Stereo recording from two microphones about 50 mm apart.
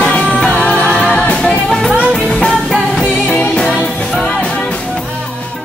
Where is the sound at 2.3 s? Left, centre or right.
Centre.